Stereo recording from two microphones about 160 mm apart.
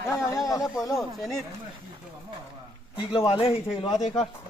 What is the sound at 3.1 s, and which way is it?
Speech, 35° left (ahead or behind).